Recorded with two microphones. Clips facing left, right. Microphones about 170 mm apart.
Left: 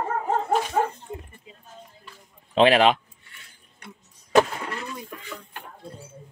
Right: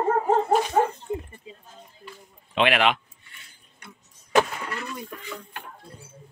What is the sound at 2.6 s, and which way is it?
Speech, 35° left (ahead or behind).